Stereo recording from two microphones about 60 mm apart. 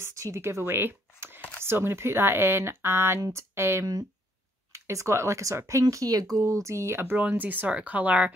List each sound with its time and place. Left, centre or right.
0.2 s speech: right
6.4 s speech: right
7.2 s speech: right